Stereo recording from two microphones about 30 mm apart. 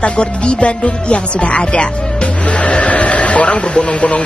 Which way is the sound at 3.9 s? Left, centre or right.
Left.